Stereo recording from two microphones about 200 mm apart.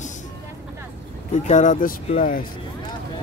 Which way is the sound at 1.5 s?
40° left (ahead or behind).